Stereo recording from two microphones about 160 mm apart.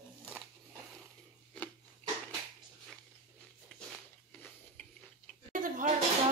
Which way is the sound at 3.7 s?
5° left (ahead or behind).